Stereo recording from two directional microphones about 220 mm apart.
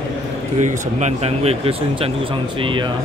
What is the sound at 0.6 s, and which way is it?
Speech, 30° right (ahead or behind).